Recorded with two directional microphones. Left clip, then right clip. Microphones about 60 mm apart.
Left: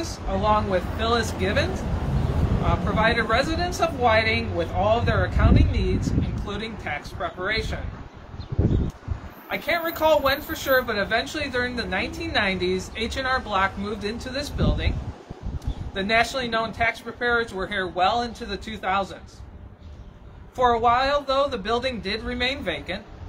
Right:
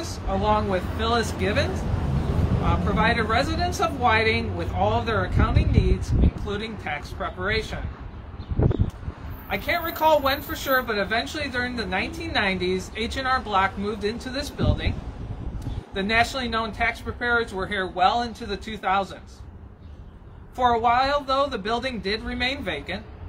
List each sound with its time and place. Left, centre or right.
0.0 s a man's voice: left
9.5 s a man's voice: left
20.5 s a man's voice: left